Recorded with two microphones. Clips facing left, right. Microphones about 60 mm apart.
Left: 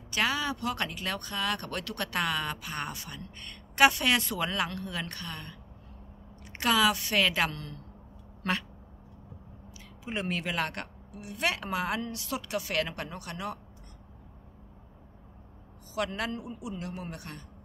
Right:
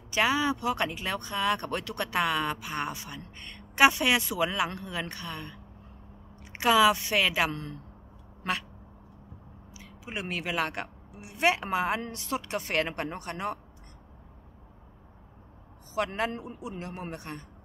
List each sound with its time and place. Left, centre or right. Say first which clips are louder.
0.1 s a woman's voice: right 4 dB; centre
7.5 s speech: right 4 dB; right
8.4 s a sound: even; centre
10.0 s a woman's voice: left 1 dB; centre; by 13.6 s right
16.2 s a woman's voice: right 3 dB; right